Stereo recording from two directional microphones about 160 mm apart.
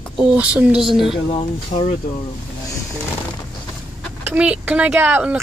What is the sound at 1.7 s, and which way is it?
Speech, 50° left (ahead or behind).